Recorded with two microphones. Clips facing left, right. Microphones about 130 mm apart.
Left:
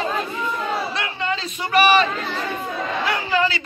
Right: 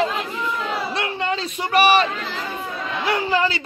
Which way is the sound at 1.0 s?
50° right (ahead or behind).